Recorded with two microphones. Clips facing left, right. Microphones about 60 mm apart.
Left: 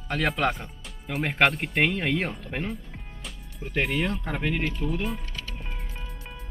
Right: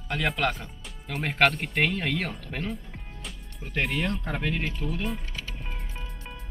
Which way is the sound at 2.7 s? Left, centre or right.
Centre.